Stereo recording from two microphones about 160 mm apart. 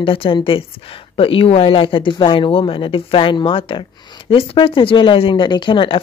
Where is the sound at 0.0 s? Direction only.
35° left (ahead or behind).